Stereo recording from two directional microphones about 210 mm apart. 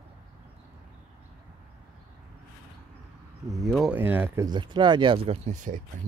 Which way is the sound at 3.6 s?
Centre (ahead or behind).